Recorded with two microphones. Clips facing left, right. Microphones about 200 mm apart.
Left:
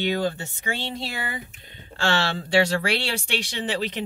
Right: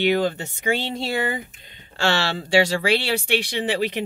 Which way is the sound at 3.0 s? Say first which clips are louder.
Right 5 dB; 60° right (ahead or behind).